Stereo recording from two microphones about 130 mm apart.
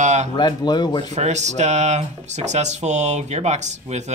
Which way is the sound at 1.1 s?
60° right (ahead or behind).